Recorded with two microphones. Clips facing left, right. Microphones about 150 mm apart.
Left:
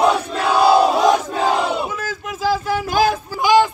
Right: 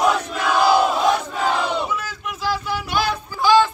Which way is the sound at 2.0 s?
45° left (ahead or behind).